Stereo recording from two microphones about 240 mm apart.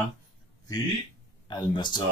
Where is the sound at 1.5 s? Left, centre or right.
Centre.